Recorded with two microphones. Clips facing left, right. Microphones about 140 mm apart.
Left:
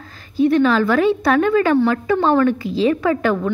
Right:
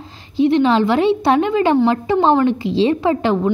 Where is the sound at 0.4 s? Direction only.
20° right (ahead or behind).